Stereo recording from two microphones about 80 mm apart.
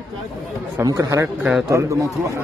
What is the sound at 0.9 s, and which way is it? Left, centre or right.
Speech, right.